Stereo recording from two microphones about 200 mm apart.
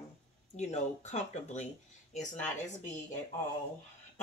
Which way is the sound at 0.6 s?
35° left (ahead or behind).